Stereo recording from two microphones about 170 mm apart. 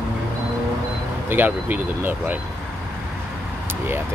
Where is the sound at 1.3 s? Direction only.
10° right (ahead or behind).